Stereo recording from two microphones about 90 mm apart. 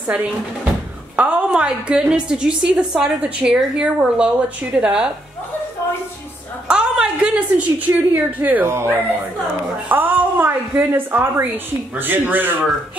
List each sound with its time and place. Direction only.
0.0 s a woman's voice: 20° right (ahead or behind)
6.7 s a woman's voice: 10° right (ahead or behind)